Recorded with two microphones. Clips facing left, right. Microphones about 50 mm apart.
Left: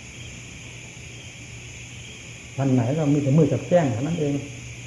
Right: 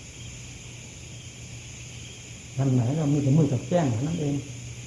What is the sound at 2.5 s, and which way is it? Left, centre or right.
Speech, left.